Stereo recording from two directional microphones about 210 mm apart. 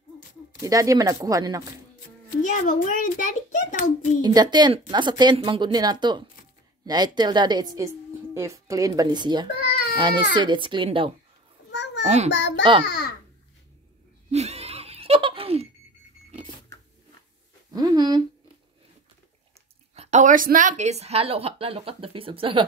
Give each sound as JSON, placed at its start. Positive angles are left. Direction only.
{"t": 0.6, "sound": "a woman's voice", "side_deg": -15}
{"t": 2.4, "sound": "a child's voice", "side_deg": 40}
{"t": 4.2, "sound": "a woman's voice", "side_deg": -20}
{"t": 11.7, "sound": "a sound", "side_deg": 55}
{"t": 12.0, "sound": "a child's voice", "side_deg": -30}
{"t": 12.3, "sound": "a child's voice", "side_deg": 60}
{"t": 14.3, "sound": "laughter", "side_deg": -30}
{"t": 17.7, "sound": "speech", "side_deg": -20}
{"t": 20.0, "sound": "a woman's voice", "side_deg": -35}